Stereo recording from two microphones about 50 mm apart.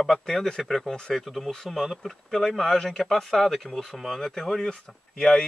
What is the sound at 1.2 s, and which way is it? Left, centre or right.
Speech, centre.